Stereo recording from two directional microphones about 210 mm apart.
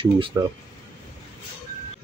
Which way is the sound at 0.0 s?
25° right (ahead or behind).